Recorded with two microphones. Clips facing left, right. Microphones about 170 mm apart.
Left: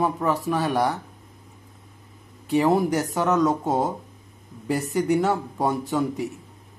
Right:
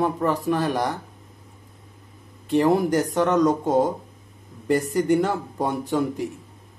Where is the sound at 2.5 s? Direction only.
Centre (ahead or behind).